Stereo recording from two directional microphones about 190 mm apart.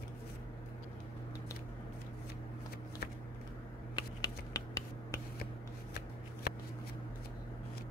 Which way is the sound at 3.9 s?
20° left (ahead or behind).